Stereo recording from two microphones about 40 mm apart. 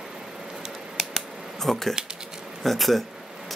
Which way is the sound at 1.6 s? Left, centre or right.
Centre.